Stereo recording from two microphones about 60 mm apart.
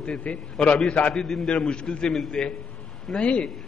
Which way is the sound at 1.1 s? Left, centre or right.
Centre.